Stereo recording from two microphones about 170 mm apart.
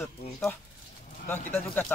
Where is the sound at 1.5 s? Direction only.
15° left (ahead or behind).